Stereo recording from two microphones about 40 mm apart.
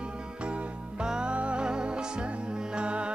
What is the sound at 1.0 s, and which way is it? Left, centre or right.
Music, right.